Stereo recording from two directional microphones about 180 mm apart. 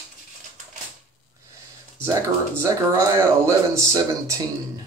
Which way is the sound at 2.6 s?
15° right (ahead or behind).